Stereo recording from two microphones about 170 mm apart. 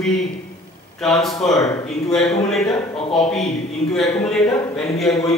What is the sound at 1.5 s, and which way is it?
Speech, 20° left (ahead or behind).